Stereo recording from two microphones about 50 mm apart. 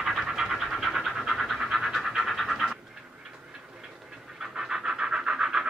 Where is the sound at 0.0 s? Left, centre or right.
Centre.